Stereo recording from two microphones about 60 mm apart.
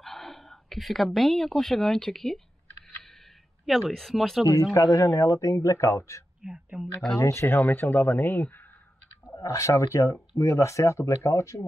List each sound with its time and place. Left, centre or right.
0.0 s speech: centre
3.6 s speech: centre
4.7 s speech: left
6.4 s speech: centre
7.2 s speech: left
7.4 s speech: left
9.4 s speech: left